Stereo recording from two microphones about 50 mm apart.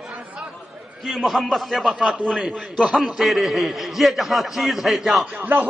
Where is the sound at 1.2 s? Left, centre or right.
Centre.